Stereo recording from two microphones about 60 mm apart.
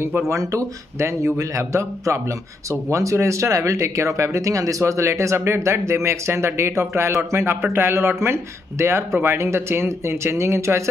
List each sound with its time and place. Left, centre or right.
0.3 s a man's voice: right